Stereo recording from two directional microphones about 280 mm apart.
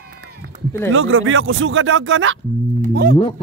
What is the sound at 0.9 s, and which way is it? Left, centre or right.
A man's voice, right.